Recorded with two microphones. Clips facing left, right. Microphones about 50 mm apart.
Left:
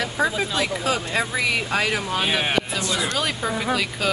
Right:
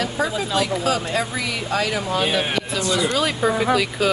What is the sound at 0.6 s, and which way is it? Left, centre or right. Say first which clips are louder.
Speech: right 6 dB; left.